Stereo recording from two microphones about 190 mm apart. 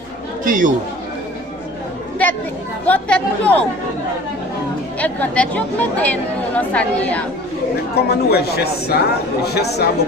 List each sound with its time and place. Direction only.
0.5 s speech: 45° right (ahead or behind)
2.9 s speech: 10° left (ahead or behind)
4.9 s speech: 5° left (ahead or behind)
7.9 s speech: 55° left (ahead or behind)